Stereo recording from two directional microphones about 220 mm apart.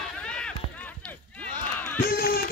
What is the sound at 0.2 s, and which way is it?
Run, 5° left (ahead or behind).